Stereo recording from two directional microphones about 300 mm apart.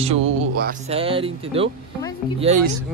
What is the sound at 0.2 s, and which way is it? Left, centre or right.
Speech, right.